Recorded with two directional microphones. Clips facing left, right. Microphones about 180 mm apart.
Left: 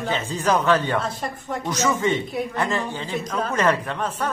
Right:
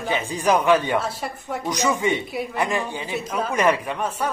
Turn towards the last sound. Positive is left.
turn(degrees=-10)  # may be behind; listen again after turning